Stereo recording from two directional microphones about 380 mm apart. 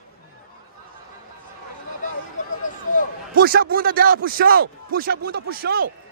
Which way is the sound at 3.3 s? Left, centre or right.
Right.